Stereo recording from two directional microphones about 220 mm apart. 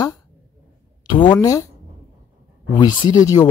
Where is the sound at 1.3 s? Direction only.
15° left (ahead or behind).